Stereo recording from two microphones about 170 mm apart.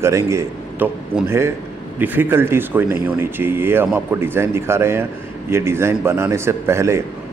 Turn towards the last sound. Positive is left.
turn(degrees=-15)  # may be behind; listen again after turning